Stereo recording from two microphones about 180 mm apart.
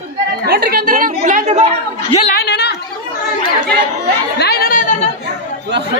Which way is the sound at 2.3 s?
70° left (ahead or behind).